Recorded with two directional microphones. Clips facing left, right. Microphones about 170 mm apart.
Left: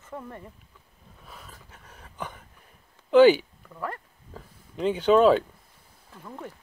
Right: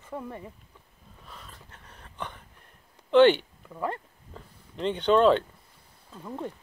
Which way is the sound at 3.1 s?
5° left (ahead or behind).